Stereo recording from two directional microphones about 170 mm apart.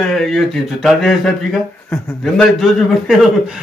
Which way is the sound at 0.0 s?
5° left (ahead or behind).